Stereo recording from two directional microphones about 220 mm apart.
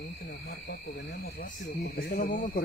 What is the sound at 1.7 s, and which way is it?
Speech, 45° left (ahead or behind).